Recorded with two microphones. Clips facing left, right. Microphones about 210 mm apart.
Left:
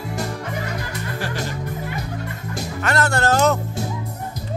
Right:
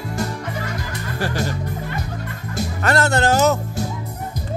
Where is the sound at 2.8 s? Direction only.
35° right (ahead or behind).